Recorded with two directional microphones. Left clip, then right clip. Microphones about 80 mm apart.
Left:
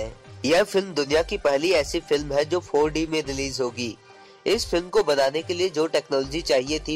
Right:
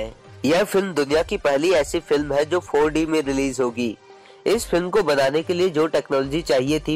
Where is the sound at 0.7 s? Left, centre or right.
Centre.